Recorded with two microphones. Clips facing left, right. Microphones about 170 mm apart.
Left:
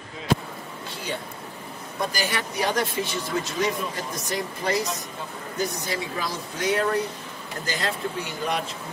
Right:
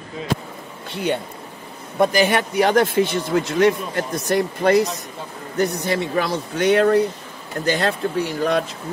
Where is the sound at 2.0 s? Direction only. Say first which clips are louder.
Right 11 dB; 60° right (ahead or behind).